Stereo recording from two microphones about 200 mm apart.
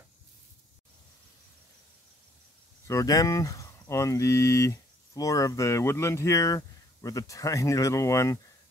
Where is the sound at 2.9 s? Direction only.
15° left (ahead or behind).